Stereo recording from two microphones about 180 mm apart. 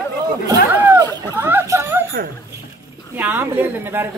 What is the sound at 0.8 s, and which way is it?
Speech, 20° right (ahead or behind).